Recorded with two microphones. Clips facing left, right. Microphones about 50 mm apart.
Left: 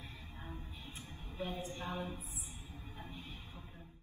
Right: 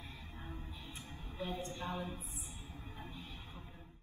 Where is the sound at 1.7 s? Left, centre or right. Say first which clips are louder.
Even; left.